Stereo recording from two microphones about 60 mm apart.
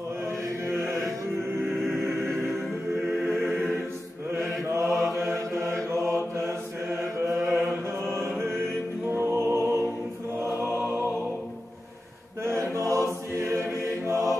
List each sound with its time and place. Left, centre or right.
0.7 s music: right
1.6 s music: centre
3.3 s music: centre
4.8 s mantra: centre
5.3 s mantra: right
7.3 s chant: centre
9.1 s music: right
12.4 s choir: right